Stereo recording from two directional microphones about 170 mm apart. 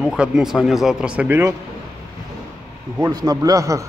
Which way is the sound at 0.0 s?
5° right (ahead or behind).